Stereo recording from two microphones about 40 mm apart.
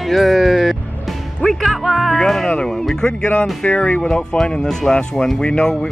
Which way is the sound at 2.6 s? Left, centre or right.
Centre.